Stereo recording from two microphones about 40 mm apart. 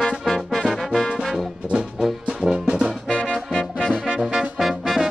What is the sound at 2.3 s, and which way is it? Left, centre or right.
Brass instrument, centre.